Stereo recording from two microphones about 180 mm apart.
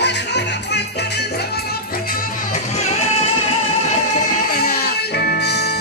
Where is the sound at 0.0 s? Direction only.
70° left (ahead or behind).